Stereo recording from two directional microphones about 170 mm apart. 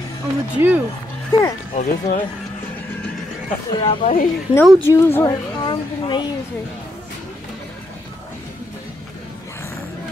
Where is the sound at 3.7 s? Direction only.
30° left (ahead or behind).